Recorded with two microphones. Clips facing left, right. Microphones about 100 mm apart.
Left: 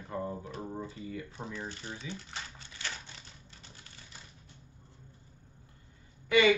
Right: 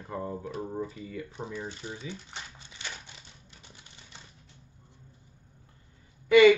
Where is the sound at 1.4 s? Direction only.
15° right (ahead or behind).